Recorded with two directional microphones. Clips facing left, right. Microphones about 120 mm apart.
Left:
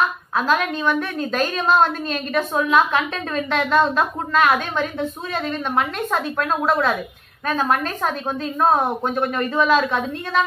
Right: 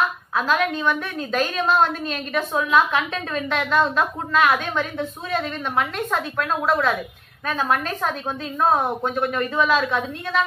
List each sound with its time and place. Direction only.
0.4 s a woman's voice: centre (ahead or behind)
4.5 s a woman's voice: 10° left (ahead or behind)
8.5 s speech: 5° left (ahead or behind)
9.6 s a woman's voice: 5° right (ahead or behind)